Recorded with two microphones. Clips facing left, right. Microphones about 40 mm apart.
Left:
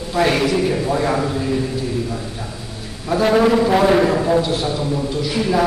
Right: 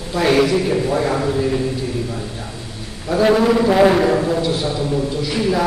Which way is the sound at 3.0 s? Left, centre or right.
Centre.